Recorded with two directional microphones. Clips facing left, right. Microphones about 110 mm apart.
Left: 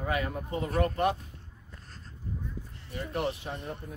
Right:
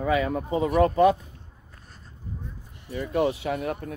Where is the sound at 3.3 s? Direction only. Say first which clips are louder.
Right 8 dB; 85° right.